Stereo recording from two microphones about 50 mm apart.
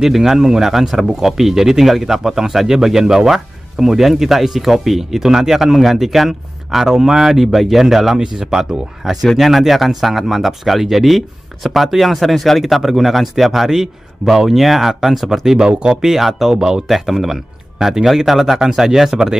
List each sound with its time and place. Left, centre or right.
0.0 s speech: centre
16.1 s speech: centre